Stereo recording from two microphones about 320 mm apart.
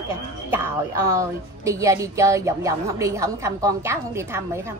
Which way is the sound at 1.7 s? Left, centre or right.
Centre.